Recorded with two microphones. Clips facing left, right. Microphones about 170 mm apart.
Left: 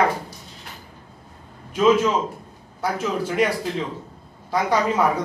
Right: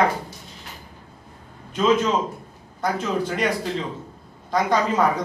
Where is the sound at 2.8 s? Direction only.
5° left (ahead or behind).